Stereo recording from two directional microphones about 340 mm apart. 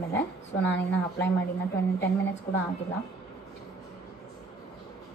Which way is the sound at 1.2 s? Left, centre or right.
Left.